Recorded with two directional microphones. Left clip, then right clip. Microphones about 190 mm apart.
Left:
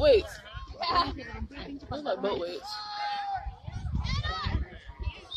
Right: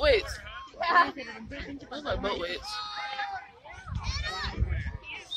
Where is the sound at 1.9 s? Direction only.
45° left (ahead or behind).